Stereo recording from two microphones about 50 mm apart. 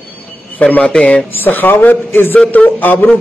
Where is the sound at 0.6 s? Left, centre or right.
Left.